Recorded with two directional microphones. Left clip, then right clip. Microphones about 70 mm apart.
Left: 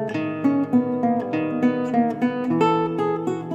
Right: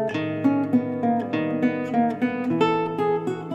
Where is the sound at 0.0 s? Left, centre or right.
Left.